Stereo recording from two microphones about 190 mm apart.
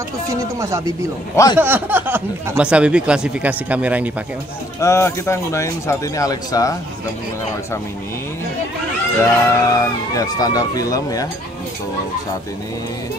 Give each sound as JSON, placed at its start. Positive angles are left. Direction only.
{"t": 0.6, "sound": "speech", "side_deg": -15}
{"t": 1.3, "sound": "speech", "side_deg": 20}
{"t": 1.6, "sound": "speech", "side_deg": -10}
{"t": 4.7, "sound": "speech", "side_deg": 15}
{"t": 9.2, "sound": "speech", "side_deg": 15}